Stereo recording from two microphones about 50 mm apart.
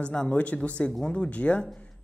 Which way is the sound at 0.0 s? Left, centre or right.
Centre.